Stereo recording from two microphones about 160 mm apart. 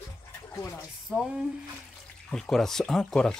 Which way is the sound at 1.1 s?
5° right (ahead or behind).